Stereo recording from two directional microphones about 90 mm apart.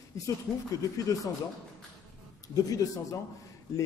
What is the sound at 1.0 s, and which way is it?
Speech, 40° left (ahead or behind).